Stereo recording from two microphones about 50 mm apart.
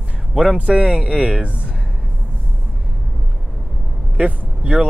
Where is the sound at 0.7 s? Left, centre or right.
Right.